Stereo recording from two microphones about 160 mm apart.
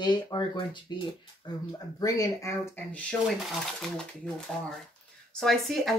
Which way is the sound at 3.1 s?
5° left (ahead or behind).